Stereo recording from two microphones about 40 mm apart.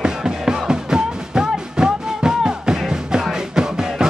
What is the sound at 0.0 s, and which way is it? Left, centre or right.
Music, centre.